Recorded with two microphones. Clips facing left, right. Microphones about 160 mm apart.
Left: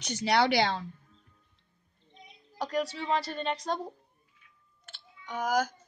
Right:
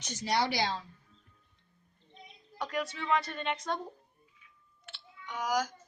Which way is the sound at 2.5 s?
35° left (ahead or behind).